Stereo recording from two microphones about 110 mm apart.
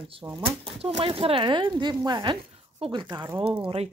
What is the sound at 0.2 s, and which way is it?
Speech, 30° right (ahead or behind).